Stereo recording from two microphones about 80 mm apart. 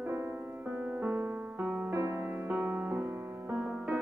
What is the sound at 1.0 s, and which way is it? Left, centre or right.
Music, right.